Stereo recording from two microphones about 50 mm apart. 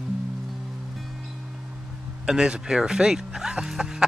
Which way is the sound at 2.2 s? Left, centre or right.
Centre.